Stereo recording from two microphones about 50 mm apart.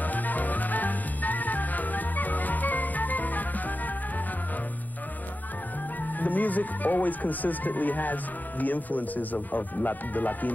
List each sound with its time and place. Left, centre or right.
0.0 s music: left
6.0 s speech: left